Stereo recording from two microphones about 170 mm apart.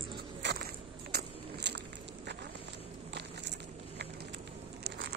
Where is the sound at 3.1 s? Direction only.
90° right.